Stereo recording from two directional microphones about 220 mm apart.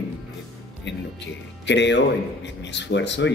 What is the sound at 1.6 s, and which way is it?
Speech, 55° left (ahead or behind).